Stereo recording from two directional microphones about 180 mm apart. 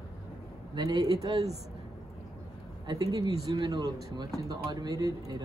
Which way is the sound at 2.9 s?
20° right (ahead or behind).